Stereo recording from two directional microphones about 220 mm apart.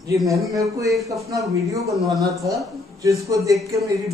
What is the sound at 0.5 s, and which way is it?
A man's voice, 15° right (ahead or behind).